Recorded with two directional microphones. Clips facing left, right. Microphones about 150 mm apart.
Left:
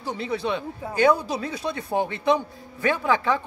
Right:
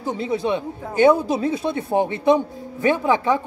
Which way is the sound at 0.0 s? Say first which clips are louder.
Right 4 dB; 20° right (ahead or behind).